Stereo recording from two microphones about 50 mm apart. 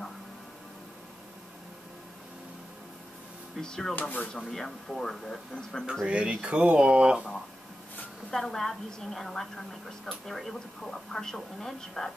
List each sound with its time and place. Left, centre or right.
3.6 s a woman's voice: centre
4.0 s speech: left
4.5 s a woman's voice: centre
6.0 s speech: right
8.3 s a woman's voice: centre